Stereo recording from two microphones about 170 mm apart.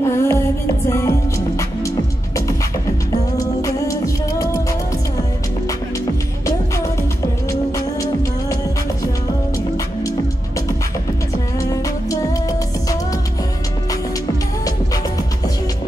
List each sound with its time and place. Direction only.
0.0 s music: 15° left (ahead or behind)
3.3 s music: 20° left (ahead or behind)
6.4 s music: 15° left (ahead or behind)
11.7 s music: 20° left (ahead or behind)